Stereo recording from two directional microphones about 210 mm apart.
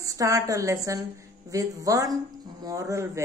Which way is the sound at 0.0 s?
15° right (ahead or behind).